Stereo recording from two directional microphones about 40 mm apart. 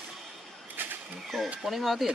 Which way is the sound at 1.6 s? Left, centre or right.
Centre.